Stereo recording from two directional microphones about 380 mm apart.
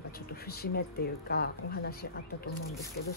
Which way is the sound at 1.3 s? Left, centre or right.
Left.